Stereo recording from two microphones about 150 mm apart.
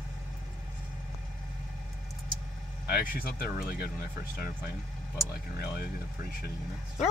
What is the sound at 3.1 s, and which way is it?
Speech, 85° left.